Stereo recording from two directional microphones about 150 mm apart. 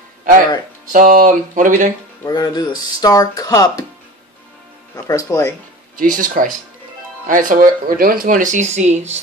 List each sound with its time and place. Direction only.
0.2 s speech: 60° right (ahead or behind)
2.2 s speech: 25° left (ahead or behind)
4.9 s speech: 20° left (ahead or behind)
5.9 s speech: 60° right (ahead or behind)